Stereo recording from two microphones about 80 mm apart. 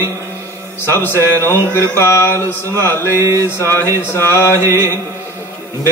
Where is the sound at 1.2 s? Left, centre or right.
Right.